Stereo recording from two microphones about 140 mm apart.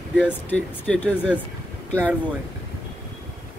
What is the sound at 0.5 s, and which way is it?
Speech, 10° left (ahead or behind).